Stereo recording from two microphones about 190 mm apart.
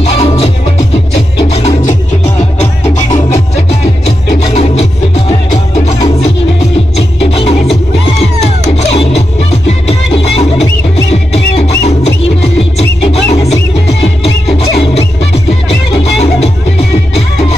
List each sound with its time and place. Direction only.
0.0 s music: 30° left (ahead or behind)
2.6 s music: 35° left (ahead or behind)
7.2 s music: 30° left (ahead or behind)
9.7 s music: 30° left (ahead or behind)
12.7 s music: 35° left (ahead or behind)
16.0 s music: 35° left (ahead or behind)